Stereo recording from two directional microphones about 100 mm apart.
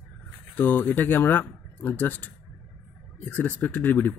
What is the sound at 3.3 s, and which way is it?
Speech, 20° left (ahead or behind).